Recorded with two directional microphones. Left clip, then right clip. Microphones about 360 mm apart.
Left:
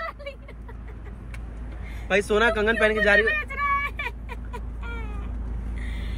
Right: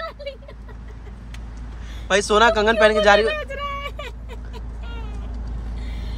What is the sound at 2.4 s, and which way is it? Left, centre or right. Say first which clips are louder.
Speech: right 8 dB; centre.